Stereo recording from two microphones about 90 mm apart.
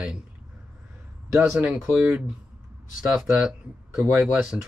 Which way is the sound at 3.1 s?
5° right (ahead or behind).